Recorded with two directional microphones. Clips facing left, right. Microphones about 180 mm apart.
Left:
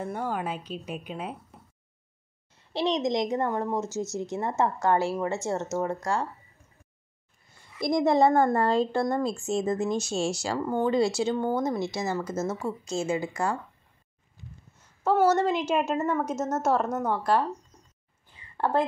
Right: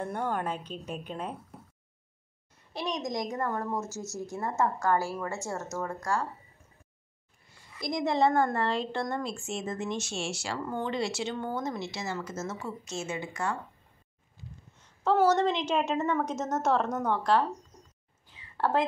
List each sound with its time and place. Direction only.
0.0 s speech: 5° left (ahead or behind)
2.7 s speech: 25° left (ahead or behind)
7.8 s a woman's voice: 50° left (ahead or behind)
11.3 s speech: 25° left (ahead or behind)
11.9 s a woman's voice: 40° left (ahead or behind)
14.8 s a woman's voice: 5° left (ahead or behind)
18.6 s speech: 15° left (ahead or behind)